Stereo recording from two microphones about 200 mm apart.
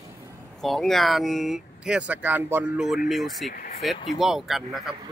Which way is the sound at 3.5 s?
45° left (ahead or behind).